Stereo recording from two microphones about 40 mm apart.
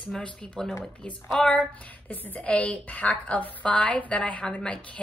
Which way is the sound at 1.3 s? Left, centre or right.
Centre.